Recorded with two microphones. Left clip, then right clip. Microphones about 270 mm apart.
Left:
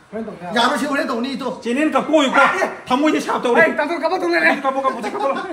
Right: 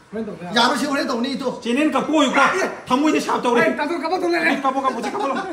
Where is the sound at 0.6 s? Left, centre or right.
Centre.